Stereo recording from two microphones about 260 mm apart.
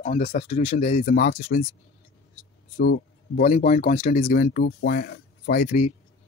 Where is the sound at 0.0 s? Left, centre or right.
Left.